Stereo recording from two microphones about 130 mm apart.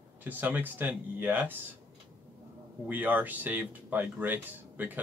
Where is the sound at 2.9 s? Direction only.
15° right (ahead or behind).